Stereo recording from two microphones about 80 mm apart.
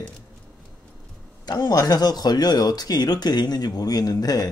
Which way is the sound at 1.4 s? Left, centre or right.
Left.